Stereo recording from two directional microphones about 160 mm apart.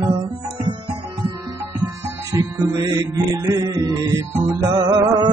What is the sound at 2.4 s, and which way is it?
Music, 20° right (ahead or behind).